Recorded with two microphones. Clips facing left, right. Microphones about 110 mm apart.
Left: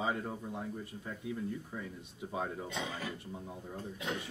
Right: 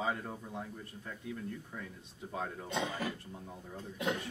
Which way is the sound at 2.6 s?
50° right (ahead or behind).